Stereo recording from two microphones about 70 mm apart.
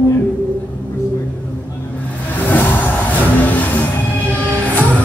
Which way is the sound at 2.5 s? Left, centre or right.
Left.